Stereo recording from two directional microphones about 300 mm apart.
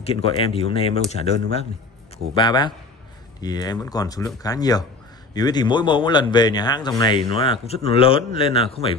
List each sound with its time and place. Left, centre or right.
0.0 s speech: centre